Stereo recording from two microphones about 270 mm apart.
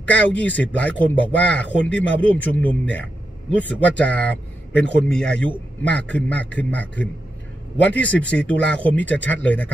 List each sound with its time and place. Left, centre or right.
0.0 s speech: centre